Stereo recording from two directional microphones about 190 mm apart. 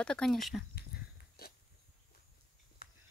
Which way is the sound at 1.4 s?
55° left (ahead or behind).